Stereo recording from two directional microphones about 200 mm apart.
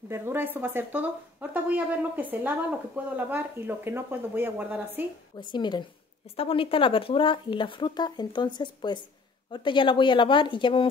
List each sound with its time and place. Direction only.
0.1 s speech: 10° right (ahead or behind)
5.4 s speech: 25° left (ahead or behind)